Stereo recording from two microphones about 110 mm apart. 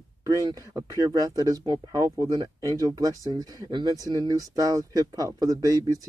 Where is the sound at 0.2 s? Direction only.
35° right (ahead or behind).